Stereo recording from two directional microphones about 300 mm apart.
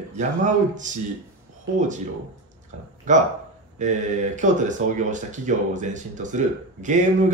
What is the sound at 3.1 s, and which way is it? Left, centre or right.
Speech, right.